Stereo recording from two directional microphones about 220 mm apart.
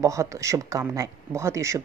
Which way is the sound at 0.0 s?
15° right (ahead or behind).